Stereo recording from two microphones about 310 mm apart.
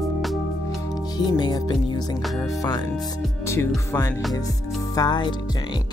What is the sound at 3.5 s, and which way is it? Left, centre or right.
Speech, centre.